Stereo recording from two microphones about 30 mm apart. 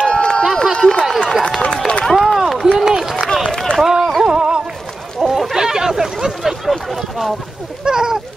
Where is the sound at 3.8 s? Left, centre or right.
Centre.